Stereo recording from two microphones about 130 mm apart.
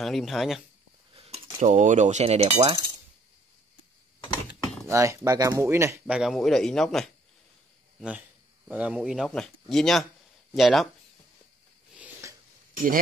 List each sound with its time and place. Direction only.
0.0 s a man's voice: centre (ahead or behind)
1.1 s a sound: 50° right (ahead or behind)
1.6 s speech: 75° right (ahead or behind); by 2.8 s 50° right (ahead or behind)
4.8 s speech: 20° right (ahead or behind)
6.0 s speech: 10° right (ahead or behind)
6.3 s a man's voice: 5° left (ahead or behind)
8.6 s a man's voice: 10° right (ahead or behind)
12.2 s a sound: 20° right (ahead or behind)